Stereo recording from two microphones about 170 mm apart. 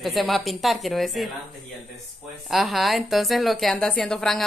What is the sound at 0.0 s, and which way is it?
A woman's voice, centre (ahead or behind).